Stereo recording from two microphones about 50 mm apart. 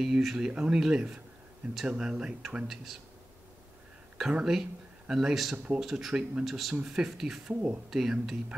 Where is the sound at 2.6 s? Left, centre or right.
Centre.